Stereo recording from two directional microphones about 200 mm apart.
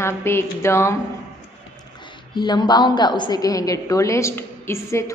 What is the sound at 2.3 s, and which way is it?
A woman's voice, 20° left (ahead or behind).